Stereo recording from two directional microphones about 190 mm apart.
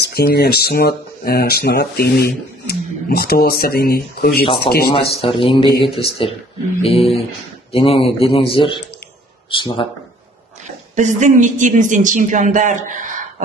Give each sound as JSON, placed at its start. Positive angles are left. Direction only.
{"t": 0.0, "sound": "speech", "side_deg": 55}
{"t": 5.2, "sound": "speech", "side_deg": 25}
{"t": 11.0, "sound": "speech", "side_deg": -40}